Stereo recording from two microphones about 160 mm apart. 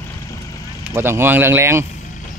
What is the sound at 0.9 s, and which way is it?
Speech, 15° right (ahead or behind).